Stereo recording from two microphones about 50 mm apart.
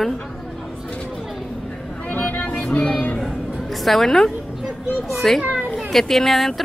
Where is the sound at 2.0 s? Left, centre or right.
Left.